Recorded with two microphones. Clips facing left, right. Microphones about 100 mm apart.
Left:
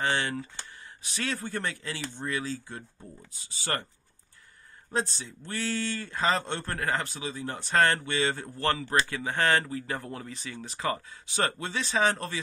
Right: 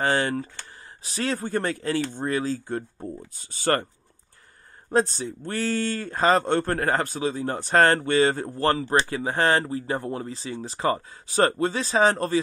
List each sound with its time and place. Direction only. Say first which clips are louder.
0.0 s speech: right 5 dB; 40° right (ahead or behind)
4.9 s speech: right 8 dB; 45° right (ahead or behind)